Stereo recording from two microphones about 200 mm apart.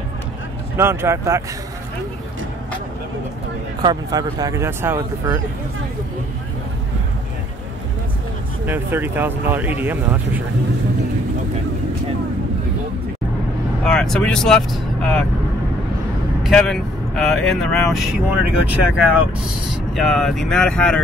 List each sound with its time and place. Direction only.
0.7 s speech: 15° right (ahead or behind)
3.8 s speech: 20° right (ahead or behind)
8.6 s speech: 10° right (ahead or behind)
13.8 s speech: 5° left (ahead or behind)
16.4 s speech: centre (ahead or behind)